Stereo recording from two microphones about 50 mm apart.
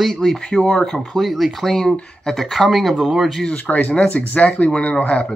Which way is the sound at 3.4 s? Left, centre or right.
Left.